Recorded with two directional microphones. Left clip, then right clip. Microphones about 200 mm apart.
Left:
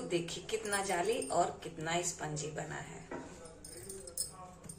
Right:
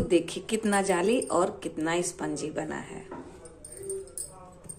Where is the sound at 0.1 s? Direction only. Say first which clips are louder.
Right 10 dB; 55° right (ahead or behind).